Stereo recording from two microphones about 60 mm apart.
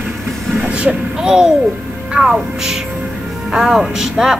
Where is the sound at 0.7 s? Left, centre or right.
Centre.